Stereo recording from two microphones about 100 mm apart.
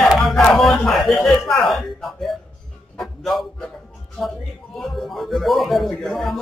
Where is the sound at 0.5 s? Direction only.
5° left (ahead or behind).